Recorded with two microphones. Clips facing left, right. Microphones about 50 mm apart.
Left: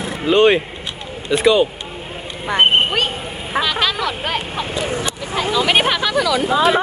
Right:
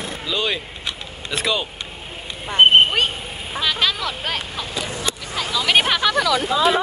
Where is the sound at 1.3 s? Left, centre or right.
Centre.